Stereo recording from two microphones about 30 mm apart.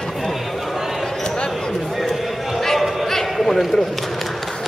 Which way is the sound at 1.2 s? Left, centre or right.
Left.